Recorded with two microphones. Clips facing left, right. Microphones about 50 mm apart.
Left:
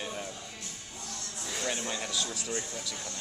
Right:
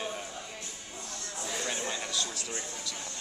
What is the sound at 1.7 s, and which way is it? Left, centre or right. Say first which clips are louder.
Speech: even; centre.